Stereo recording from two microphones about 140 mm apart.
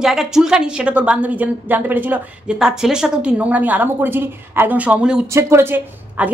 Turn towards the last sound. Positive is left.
turn(degrees=-15)  # may be behind; listen again after turning